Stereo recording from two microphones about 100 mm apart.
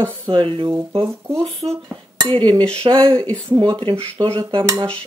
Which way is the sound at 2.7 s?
65° right (ahead or behind).